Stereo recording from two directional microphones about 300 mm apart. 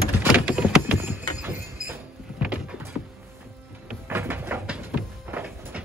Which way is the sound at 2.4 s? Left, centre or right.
Centre.